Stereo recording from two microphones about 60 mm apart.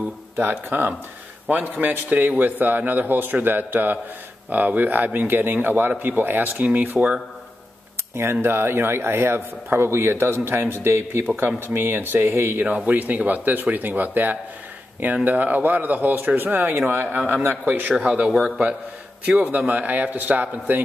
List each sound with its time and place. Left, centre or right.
0.4 s speech: right
8.2 s speech: right
12.6 s speech: right
18.3 s a man's voice: centre
19.2 s speech: right